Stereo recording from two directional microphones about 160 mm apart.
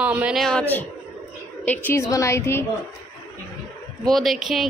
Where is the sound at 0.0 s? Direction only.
5° right (ahead or behind); by 2.6 s 15° left (ahead or behind).